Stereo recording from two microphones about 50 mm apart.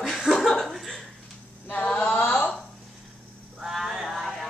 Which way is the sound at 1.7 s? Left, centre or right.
Left.